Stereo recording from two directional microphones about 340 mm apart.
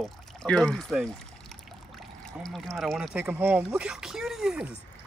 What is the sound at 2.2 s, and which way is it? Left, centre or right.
Speech, centre.